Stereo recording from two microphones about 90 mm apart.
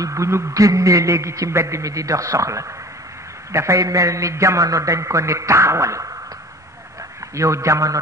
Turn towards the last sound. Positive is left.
turn(degrees=-35)  # may be behind; listen again after turning